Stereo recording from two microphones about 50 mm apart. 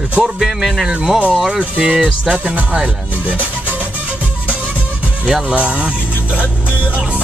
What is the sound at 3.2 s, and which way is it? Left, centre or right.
Speech, right.